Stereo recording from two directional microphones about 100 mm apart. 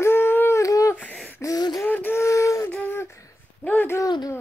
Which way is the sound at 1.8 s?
20° left (ahead or behind).